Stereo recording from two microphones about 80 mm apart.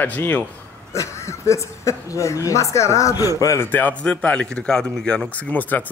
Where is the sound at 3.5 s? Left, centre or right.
Left.